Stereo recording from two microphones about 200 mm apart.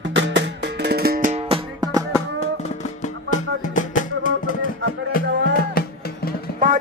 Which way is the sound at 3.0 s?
40° left (ahead or behind).